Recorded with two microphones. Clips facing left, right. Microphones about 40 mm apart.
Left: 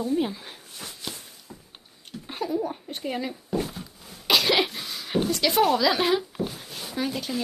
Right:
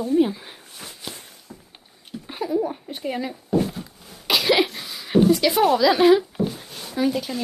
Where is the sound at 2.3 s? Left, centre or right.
Centre.